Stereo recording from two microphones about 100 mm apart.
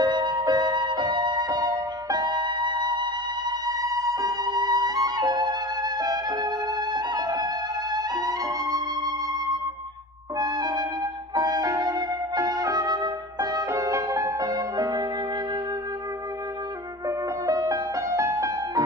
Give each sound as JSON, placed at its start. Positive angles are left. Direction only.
{"t": 0.0, "sound": "music", "side_deg": -45}
{"t": 10.4, "sound": "music", "side_deg": -45}
{"t": 17.5, "sound": "music", "side_deg": -35}